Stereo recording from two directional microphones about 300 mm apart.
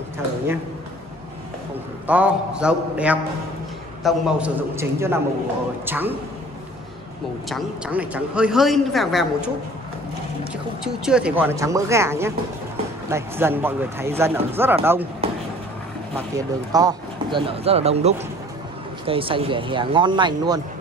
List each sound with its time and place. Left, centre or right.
2.0 s speech: centre
7.4 s speech: centre
10.8 s speech: centre
15.2 s a sound: centre
16.7 s speech: centre